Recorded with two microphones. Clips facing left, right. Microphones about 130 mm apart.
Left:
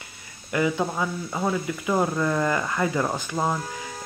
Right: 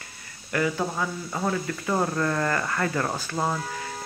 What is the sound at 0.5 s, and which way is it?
Speech, 15° left (ahead or behind).